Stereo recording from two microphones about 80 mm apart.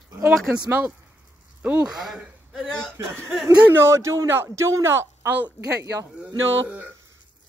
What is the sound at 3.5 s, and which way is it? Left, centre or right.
A man's voice, right.